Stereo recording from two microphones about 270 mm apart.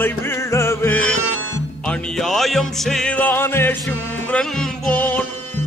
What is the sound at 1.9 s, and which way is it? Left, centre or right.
Music, centre.